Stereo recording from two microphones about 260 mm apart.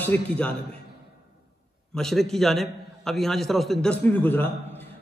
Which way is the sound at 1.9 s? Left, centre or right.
Centre.